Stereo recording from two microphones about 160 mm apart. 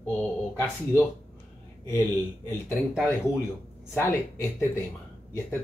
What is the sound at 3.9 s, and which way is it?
Speech, 15° left (ahead or behind).